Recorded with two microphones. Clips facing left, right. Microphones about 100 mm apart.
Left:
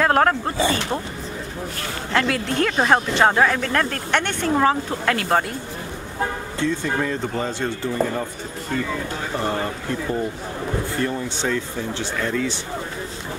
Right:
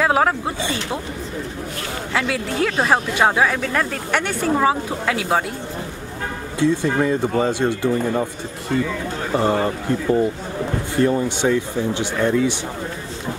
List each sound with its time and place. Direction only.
0.0 s a woman's voice: 5° right (ahead or behind)
2.1 s a woman's voice: 5° right (ahead or behind)
6.6 s speech: 15° right (ahead or behind)
9.4 s speech: 15° right (ahead or behind)